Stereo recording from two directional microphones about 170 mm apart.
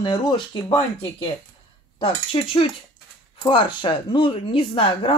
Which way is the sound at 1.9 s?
35° left (ahead or behind).